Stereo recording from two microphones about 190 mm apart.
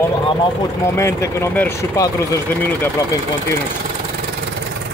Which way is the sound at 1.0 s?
15° left (ahead or behind).